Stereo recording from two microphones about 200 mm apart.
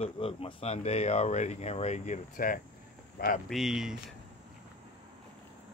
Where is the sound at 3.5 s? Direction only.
Centre (ahead or behind).